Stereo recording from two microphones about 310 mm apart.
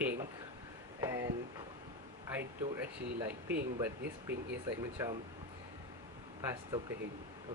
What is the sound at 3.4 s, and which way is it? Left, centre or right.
Speech, right.